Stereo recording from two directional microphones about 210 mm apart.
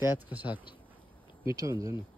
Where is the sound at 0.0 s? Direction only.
10° right (ahead or behind).